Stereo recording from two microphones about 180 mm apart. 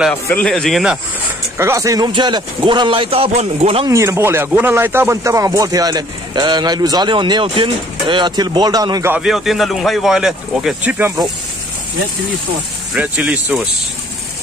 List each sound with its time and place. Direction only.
0.3 s speech: 5° left (ahead or behind)
1.6 s speech: 15° right (ahead or behind); by 3.8 s 35° right (ahead or behind)
3.8 s speech: 15° right (ahead or behind)
9.1 s speech: 5° right (ahead or behind)
12.9 s speech: 10° right (ahead or behind)